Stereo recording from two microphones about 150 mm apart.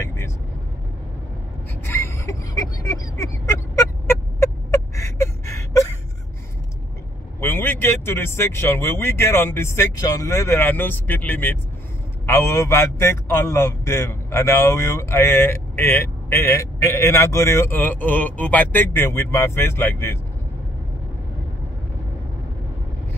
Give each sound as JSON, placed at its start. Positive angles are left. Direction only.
{"t": 0.0, "sound": "vehicle", "side_deg": 20}
{"t": 1.9, "sound": "a sound", "side_deg": 20}
{"t": 7.3, "sound": "a man's voice", "side_deg": 15}